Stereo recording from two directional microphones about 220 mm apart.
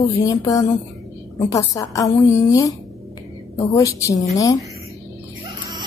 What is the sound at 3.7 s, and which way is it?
Speech, 15° left (ahead or behind).